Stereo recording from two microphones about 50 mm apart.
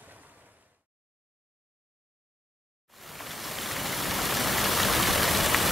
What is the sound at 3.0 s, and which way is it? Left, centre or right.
Vehicle, centre.